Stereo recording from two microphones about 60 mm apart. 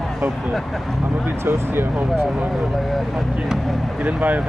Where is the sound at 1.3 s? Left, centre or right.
Right.